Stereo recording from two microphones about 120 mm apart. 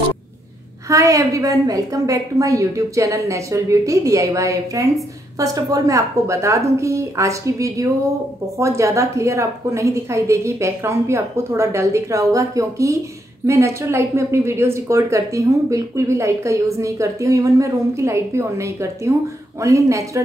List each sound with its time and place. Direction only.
0.8 s speech: 25° right (ahead or behind)